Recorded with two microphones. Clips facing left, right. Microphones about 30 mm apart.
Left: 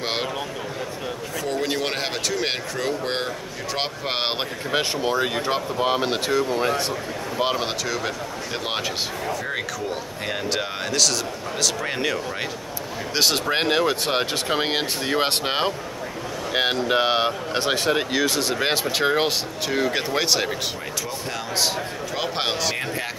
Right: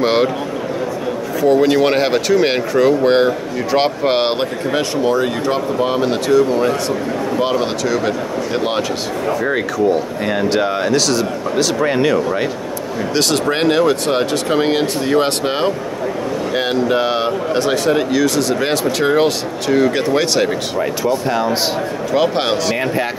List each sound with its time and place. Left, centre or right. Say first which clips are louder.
0.0 s a sound: right 12 dB; centre
1.4 s speech: right 13 dB; centre
4.7 s speech: right 5 dB; centre
7.3 s speech: right 5 dB; centre
10.2 s speech: right 8 dB; centre
13.1 s speech: right 4 dB; centre
21.0 s speech: right 15 dB; centre
22.1 s speech: right 10 dB; centre